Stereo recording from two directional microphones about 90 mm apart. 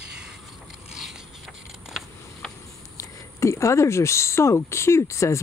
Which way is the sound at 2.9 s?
35° left (ahead or behind).